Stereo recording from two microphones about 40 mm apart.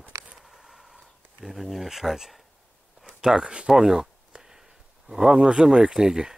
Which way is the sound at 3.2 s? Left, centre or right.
Right.